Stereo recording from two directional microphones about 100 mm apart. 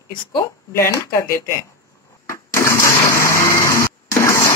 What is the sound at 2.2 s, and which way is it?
Blender, 30° left (ahead or behind).